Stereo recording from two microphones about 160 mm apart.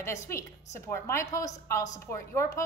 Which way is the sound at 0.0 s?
15° left (ahead or behind).